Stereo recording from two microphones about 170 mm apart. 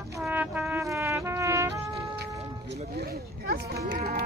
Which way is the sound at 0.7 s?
15° right (ahead or behind).